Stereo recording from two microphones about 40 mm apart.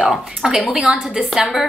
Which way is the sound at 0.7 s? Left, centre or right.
Right.